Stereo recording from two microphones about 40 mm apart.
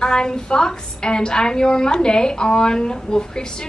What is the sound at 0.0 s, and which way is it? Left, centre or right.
A woman's voice, centre.